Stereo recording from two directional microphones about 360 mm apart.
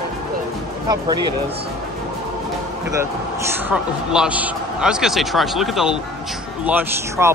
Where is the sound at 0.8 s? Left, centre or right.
Centre.